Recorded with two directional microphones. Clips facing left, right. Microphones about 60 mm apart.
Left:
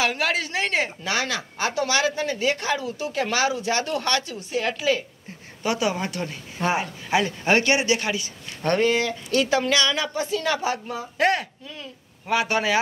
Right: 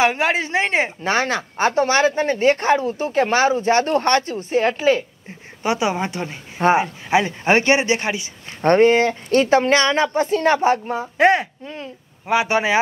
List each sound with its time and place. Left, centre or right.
0.0 s speech: right
11.1 s speech: right
11.6 s speech: right
12.3 s speech: right